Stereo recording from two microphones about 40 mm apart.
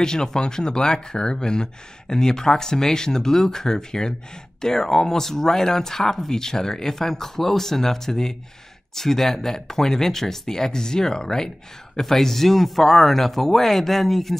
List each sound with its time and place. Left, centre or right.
0.0 s speech: centre